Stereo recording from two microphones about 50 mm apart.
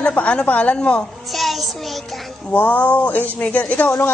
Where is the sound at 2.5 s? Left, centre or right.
Left.